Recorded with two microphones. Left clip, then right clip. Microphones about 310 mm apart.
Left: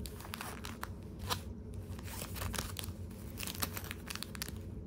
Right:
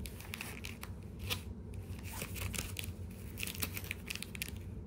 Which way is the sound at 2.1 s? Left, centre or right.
Centre.